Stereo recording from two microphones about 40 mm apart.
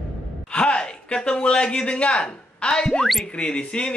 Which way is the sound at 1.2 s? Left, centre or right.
Left.